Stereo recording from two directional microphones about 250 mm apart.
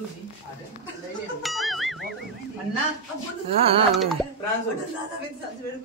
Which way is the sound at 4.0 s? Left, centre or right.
Centre.